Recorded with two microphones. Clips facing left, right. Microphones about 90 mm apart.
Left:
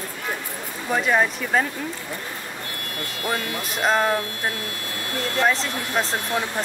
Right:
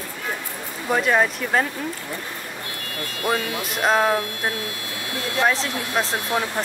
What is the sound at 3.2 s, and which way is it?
Speech, 20° right (ahead or behind).